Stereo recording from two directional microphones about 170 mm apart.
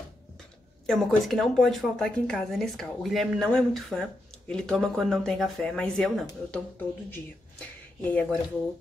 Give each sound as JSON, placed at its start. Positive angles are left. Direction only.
{"t": 0.8, "sound": "a woman's voice", "side_deg": 0}